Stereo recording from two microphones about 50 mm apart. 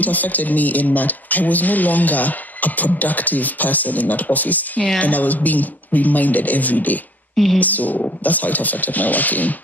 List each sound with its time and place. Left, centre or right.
0.0 s speech: left